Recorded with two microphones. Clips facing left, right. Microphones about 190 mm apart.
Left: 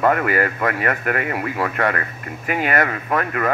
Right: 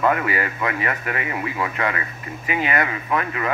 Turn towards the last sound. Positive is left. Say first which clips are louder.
# left 3 dB
turn(degrees=50)  # may be behind; listen again after turning